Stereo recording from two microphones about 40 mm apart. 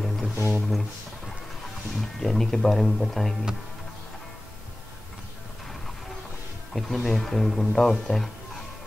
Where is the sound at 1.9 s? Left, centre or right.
Centre.